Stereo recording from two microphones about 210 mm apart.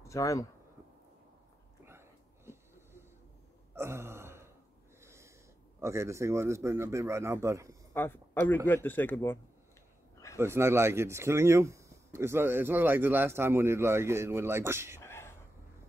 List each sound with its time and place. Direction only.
0.1 s speech: 15° left (ahead or behind)
3.7 s a sound: 10° right (ahead or behind)
5.0 s snort: 15° right (ahead or behind)
5.8 s speech: 15° right (ahead or behind)
7.9 s speech: 10° left (ahead or behind)
10.4 s speech: 10° right (ahead or behind)
15.0 s a sound: 10° left (ahead or behind)